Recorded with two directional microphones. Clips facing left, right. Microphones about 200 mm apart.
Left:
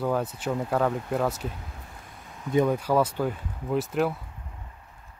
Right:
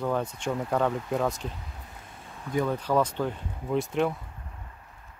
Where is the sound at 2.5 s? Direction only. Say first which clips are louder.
Left 5 dB; 20° left (ahead or behind).